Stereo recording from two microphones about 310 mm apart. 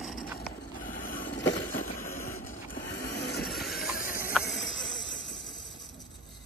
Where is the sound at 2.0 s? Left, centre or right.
Centre.